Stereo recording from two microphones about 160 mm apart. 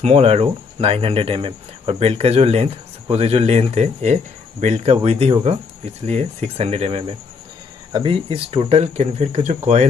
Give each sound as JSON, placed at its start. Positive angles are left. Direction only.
{"t": 0.0, "sound": "speech", "side_deg": -40}